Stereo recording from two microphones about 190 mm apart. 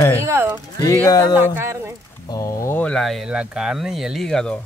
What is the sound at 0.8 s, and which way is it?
Speech, 20° left (ahead or behind).